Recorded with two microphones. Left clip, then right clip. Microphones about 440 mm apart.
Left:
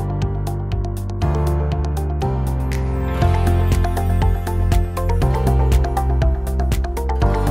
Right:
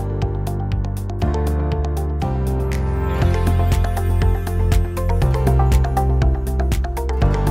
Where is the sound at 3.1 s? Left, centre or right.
Centre.